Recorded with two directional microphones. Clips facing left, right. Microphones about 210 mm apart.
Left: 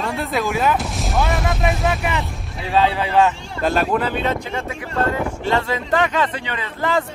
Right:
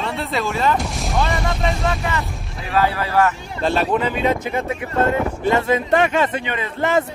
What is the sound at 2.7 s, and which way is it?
Speech, 20° left (ahead or behind).